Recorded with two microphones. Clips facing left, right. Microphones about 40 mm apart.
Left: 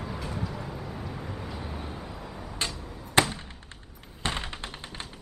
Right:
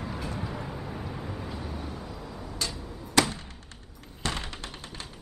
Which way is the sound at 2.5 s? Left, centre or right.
Left.